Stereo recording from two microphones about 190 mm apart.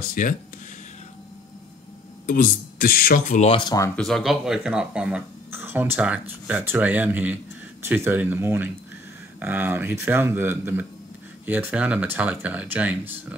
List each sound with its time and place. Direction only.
0.1 s speech: 45° left (ahead or behind)
2.2 s speech: 45° left (ahead or behind)
3.3 s speech: 30° left (ahead or behind)
3.9 s speech: centre (ahead or behind)